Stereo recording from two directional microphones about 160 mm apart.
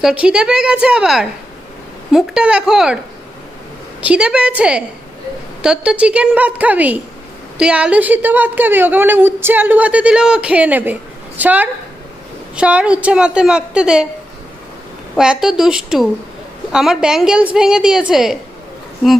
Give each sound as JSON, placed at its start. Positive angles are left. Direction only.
{"t": 0.0, "sound": "a woman's voice", "side_deg": -5}
{"t": 4.0, "sound": "a woman's voice", "side_deg": -5}
{"t": 15.1, "sound": "a woman's voice", "side_deg": -5}